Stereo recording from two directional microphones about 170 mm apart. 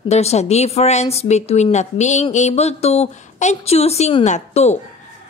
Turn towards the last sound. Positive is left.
turn(degrees=40)  # may be behind; listen again after turning